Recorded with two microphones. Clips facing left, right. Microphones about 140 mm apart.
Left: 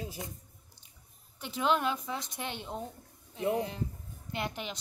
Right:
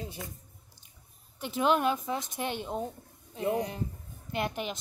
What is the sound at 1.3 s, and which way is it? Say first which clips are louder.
A woman's voice: right 3 dB; 15° right (ahead or behind).